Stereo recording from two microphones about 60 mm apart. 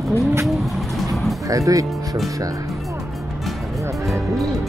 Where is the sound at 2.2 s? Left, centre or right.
Right.